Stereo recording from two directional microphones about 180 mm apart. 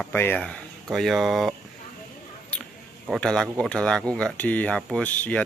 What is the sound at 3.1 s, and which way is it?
Speech, 5° left (ahead or behind).